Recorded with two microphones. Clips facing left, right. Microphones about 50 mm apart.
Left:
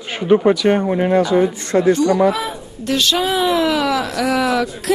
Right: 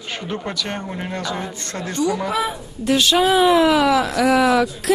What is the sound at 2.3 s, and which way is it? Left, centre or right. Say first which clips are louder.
Speech: right 2 dB; centre.